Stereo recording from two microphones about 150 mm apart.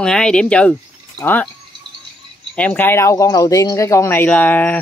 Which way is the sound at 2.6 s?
10° left (ahead or behind).